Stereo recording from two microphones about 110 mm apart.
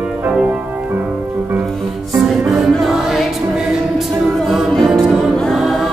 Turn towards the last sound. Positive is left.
turn(degrees=0)  # may be behind; listen again after turning